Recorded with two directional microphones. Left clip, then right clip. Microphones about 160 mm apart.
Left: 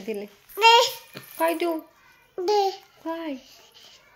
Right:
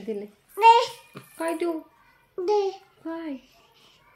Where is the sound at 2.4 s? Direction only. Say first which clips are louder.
Left 2 dB; 15° right (ahead or behind).